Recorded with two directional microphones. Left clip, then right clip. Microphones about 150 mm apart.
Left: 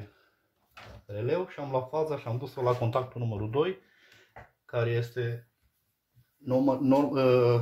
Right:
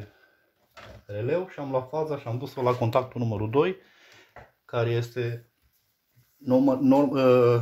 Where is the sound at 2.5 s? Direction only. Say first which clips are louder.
Right 4 dB; 45° right (ahead or behind).